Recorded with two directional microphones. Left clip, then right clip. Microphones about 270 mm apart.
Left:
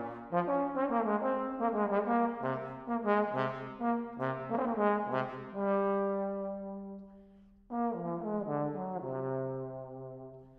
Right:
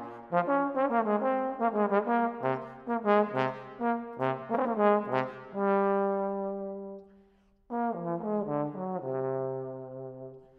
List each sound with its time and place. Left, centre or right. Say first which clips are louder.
0.3 s brass instrument: right 4 dB; right
7.7 s trombone: right 3 dB; right